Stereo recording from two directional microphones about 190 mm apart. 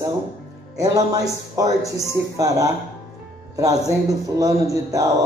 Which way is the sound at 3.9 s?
15° right (ahead or behind).